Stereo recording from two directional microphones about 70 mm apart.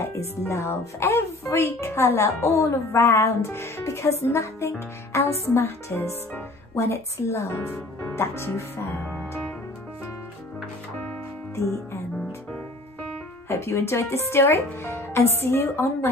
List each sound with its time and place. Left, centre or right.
0.0 s speech: left
11.5 s music: left
13.5 s speech: left